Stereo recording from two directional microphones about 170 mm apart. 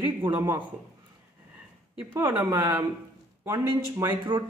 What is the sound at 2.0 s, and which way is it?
Speech, 10° right (ahead or behind).